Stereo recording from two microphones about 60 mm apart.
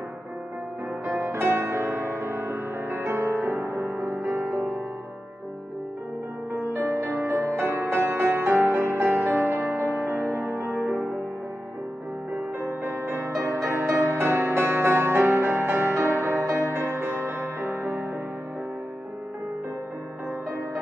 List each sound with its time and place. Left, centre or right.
1.0 s music: right
4.3 s music: centre
6.5 s music: right
12.8 s music: right